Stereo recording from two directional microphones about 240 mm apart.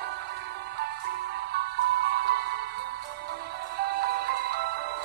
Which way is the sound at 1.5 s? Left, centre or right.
Right.